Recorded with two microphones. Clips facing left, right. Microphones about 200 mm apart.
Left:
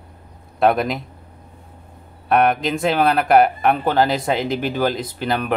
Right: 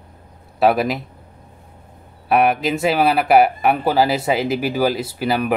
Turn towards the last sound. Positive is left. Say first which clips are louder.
# right 2 dB
turn(degrees=-5)  # may be behind; listen again after turning